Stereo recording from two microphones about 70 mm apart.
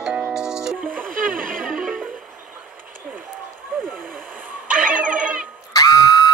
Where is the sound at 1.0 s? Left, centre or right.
Centre.